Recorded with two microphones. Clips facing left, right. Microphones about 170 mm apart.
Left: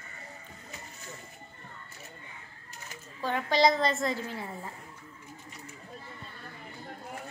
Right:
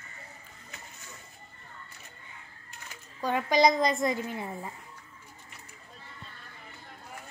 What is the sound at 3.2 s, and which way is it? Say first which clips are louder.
A woman's voice: right 2 dB; 15° right (ahead or behind).